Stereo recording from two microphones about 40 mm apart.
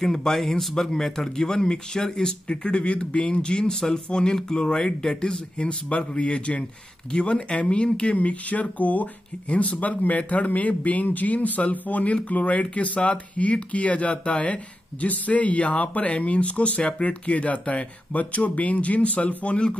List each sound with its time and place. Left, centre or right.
0.0 s speech: centre; by 19.6 s left